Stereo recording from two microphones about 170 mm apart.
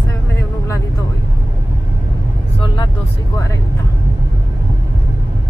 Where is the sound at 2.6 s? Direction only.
25° left (ahead or behind).